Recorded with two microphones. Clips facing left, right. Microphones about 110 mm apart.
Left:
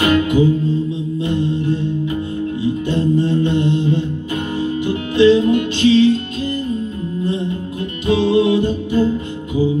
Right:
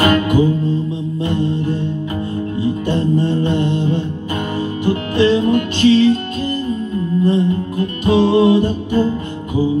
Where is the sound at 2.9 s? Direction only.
35° right (ahead or behind).